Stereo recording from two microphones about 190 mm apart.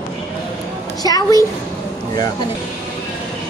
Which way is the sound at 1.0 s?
20° left (ahead or behind).